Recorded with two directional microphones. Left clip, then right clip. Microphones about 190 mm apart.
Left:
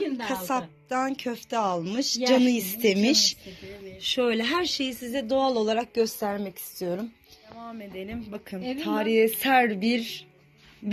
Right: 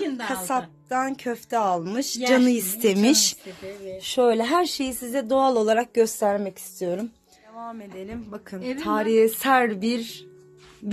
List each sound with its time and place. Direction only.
0.2 s a woman's voice: centre (ahead or behind)
3.0 s speech: 25° right (ahead or behind)
4.1 s a woman's voice: 5° right (ahead or behind); by 7.1 s 30° right (ahead or behind)
7.6 s a woman's voice: centre (ahead or behind)
8.6 s speech: 15° right (ahead or behind)